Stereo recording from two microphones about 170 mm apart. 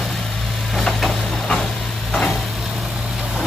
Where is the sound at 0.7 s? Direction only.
Centre (ahead or behind).